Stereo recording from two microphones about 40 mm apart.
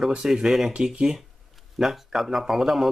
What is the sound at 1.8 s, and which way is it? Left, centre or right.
Speech, centre.